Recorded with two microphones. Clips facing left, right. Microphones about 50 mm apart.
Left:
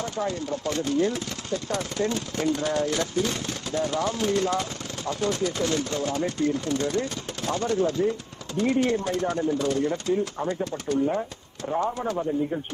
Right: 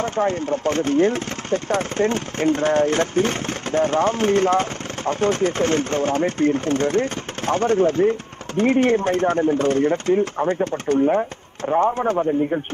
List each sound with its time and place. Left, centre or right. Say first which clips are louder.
0.0 s speech: right 7 dB; right